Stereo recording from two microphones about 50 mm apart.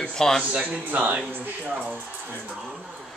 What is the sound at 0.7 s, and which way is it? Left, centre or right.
Speech, right.